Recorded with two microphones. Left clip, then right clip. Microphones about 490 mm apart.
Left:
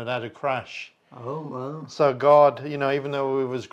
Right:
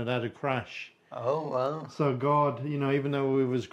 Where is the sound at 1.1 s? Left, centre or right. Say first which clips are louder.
Right 4 dB; right.